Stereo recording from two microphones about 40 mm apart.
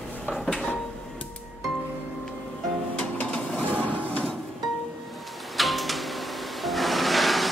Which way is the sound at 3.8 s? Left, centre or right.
Left.